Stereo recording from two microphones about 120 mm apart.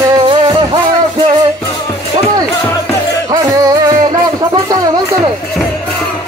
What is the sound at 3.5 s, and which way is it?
Music, 30° right (ahead or behind).